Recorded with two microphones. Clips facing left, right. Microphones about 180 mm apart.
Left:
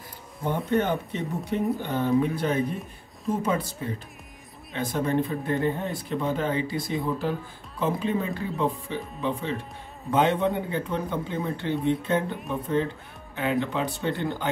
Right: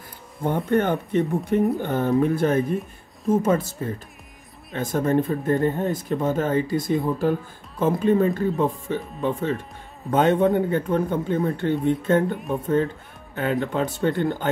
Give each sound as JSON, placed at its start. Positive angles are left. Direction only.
{"t": 0.7, "sound": "speech", "side_deg": -50}